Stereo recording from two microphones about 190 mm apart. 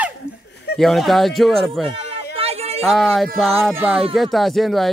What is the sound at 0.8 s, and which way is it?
A man's voice, centre (ahead or behind).